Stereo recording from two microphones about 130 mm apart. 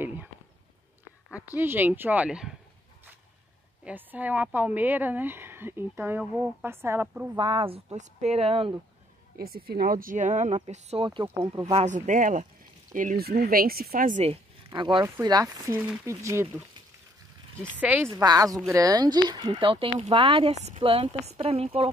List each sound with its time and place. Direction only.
0.0 s a sound: 15° right (ahead or behind)
1.3 s speech: 15° right (ahead or behind)
3.8 s speech: 15° right (ahead or behind)
7.3 s speech: 40° right (ahead or behind)
9.8 s speech: 90° right; by 11.1 s 55° right (ahead or behind)
11.4 s speech: 25° right (ahead or behind)
11.7 s speech: 65° right (ahead or behind); by 14.2 s 90° right
14.7 s speech: 35° right (ahead or behind)
17.7 s speech: 10° right (ahead or behind)
18.1 s speech: 30° right (ahead or behind)
20.5 s speech: 60° right (ahead or behind)
20.8 s speech: 45° right (ahead or behind)